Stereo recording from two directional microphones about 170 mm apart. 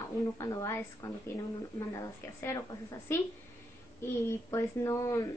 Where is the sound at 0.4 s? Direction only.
20° left (ahead or behind).